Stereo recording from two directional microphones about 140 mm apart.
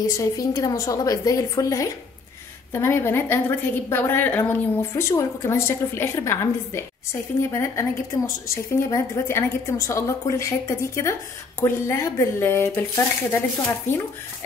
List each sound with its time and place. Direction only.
0.0 s a woman's voice: 25° left (ahead or behind)